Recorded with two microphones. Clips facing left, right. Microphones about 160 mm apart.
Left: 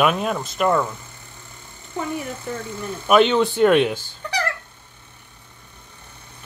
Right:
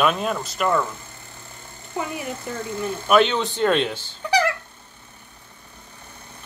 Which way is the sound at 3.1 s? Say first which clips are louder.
Left 3 dB; 10° left (ahead or behind).